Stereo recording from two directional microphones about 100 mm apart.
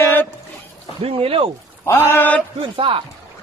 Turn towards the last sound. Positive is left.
turn(degrees=-65)  # may be behind; listen again after turning